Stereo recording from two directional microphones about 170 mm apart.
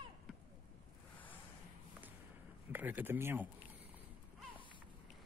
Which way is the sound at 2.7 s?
10° right (ahead or behind).